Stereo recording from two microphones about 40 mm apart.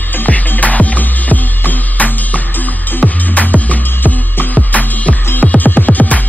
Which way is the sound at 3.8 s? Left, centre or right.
Left.